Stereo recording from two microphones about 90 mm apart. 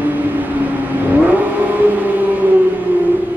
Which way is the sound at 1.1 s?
20° right (ahead or behind).